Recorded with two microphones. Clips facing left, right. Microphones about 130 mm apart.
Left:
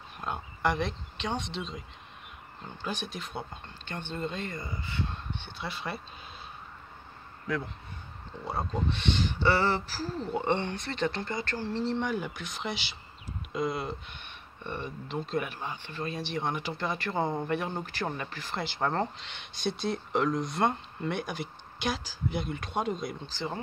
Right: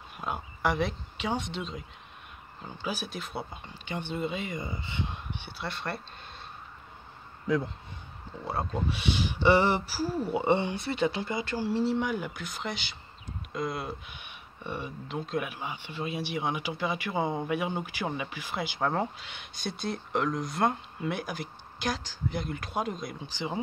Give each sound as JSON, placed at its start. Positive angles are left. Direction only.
{"t": 0.2, "sound": "speech", "side_deg": -5}
{"t": 5.6, "sound": "speech", "side_deg": 0}
{"t": 7.4, "sound": "speech", "side_deg": -15}
{"t": 8.5, "sound": "speech", "side_deg": -5}
{"t": 23.2, "sound": "speech", "side_deg": -15}